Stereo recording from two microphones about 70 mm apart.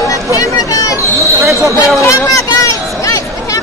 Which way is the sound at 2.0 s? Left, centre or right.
Left.